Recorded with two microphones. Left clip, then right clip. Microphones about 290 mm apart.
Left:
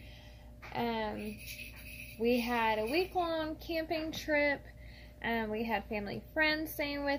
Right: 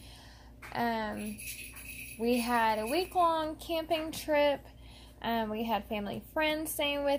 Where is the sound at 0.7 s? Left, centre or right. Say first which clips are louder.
Right 3 dB; right.